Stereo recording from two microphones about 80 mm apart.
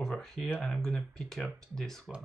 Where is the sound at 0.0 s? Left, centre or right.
Centre.